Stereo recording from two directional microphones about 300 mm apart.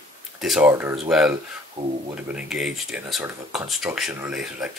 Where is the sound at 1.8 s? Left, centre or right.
Right.